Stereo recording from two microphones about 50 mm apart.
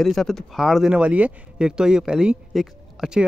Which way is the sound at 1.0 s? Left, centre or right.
Right.